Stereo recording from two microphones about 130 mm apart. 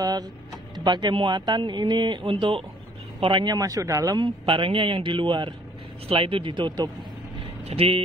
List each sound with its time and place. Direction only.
0.0 s a man's voice: 30° right (ahead or behind); by 8.0 s 50° right (ahead or behind)